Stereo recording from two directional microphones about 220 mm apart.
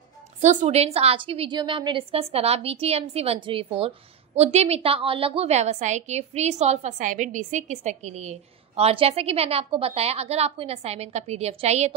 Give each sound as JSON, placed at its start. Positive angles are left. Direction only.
{"t": 0.4, "sound": "a woman's voice", "side_deg": -30}